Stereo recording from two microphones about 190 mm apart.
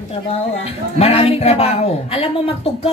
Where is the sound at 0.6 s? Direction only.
30° left (ahead or behind).